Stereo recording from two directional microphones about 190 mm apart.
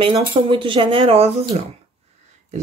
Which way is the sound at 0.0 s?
25° right (ahead or behind).